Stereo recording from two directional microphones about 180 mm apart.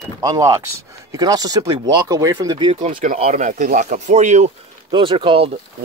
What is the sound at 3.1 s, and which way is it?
Speech, 40° right (ahead or behind).